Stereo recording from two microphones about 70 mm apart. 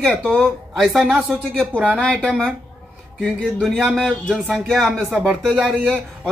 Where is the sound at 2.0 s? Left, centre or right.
Centre.